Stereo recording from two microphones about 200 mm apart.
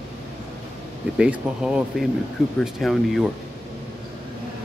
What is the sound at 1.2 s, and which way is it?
Speech, 5° right (ahead or behind).